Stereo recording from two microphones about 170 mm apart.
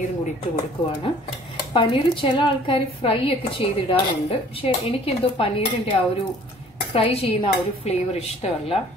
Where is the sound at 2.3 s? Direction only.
30° left (ahead or behind).